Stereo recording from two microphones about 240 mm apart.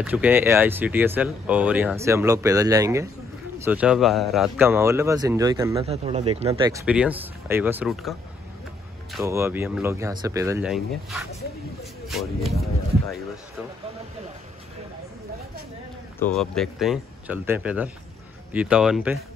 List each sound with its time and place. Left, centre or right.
0.0 s speech: centre
5.9 s speech: right
6.7 s speech: centre
9.2 s speech: centre
10.7 s speech: centre
16.2 s speech: centre